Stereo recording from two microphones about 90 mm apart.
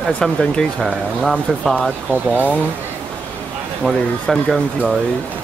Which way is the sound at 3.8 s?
Centre (ahead or behind).